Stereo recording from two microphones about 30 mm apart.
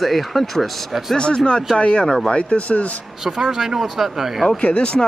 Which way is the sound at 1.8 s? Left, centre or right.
Left.